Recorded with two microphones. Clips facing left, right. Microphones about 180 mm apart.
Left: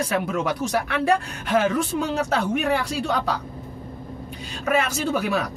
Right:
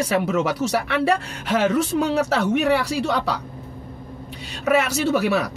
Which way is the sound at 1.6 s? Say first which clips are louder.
Right 3 dB; 75° right (ahead or behind).